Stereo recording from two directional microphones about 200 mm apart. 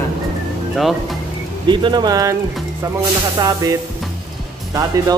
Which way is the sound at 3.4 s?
20° right (ahead or behind).